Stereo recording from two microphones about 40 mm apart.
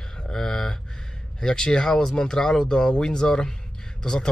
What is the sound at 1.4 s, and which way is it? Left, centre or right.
Speech, centre.